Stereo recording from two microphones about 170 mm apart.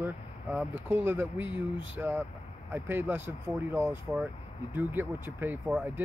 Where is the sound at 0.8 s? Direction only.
15° right (ahead or behind).